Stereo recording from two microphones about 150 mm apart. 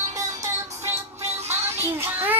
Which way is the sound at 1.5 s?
15° right (ahead or behind).